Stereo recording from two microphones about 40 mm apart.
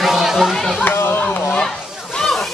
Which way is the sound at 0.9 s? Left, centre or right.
Left.